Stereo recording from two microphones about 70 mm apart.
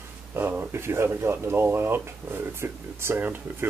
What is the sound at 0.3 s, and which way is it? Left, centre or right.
Speech, right.